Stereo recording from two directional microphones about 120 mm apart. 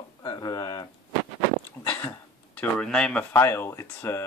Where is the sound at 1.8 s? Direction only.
15° left (ahead or behind).